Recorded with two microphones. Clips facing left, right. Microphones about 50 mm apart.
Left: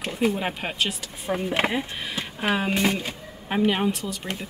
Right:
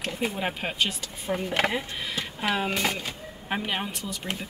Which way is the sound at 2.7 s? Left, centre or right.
Left.